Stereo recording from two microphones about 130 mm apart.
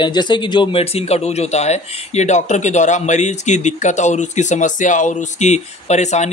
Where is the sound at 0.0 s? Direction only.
35° left (ahead or behind).